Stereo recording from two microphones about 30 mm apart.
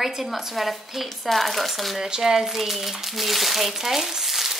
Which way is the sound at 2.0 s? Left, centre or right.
Centre.